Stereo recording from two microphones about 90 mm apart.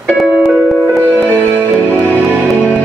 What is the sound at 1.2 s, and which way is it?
Music, 20° right (ahead or behind).